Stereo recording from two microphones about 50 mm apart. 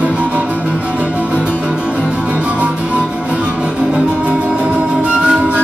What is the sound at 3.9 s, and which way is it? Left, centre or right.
Music, right.